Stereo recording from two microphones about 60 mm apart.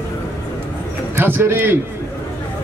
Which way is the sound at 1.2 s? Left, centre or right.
Right.